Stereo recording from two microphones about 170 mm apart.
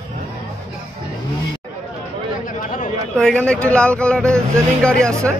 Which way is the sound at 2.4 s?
55° left (ahead or behind).